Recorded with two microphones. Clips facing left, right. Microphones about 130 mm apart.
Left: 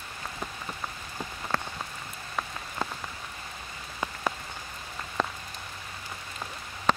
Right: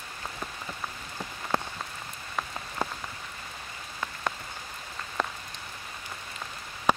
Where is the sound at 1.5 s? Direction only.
20° right (ahead or behind).